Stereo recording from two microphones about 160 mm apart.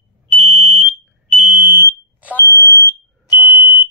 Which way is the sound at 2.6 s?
20° left (ahead or behind).